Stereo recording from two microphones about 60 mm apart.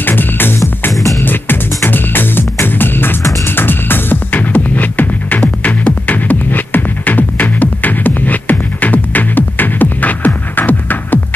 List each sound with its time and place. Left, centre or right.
0.0 s music: left